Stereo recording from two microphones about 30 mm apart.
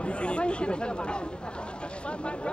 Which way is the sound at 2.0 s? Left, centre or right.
Left.